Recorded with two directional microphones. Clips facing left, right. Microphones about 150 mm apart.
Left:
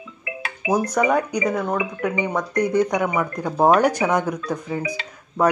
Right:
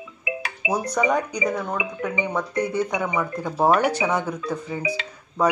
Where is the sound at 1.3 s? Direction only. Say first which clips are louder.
Left 3 dB; 10° left (ahead or behind).